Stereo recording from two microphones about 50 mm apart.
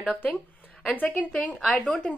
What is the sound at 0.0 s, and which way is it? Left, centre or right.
A woman's voice, left.